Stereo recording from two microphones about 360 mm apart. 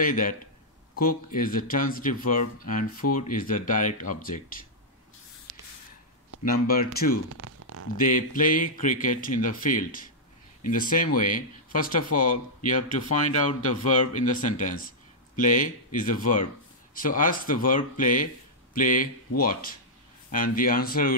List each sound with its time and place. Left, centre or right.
0.0 s speech: left
6.4 s speech: left
7.3 s a sound: right
8.0 s speech: left
14.1 s speech: left